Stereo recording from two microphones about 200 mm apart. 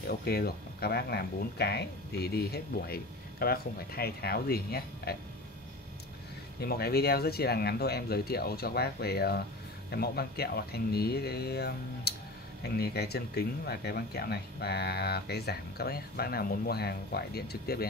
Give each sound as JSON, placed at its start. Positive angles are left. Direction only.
{"t": 0.0, "sound": "speech", "side_deg": 50}
{"t": 6.6, "sound": "speech", "side_deg": 50}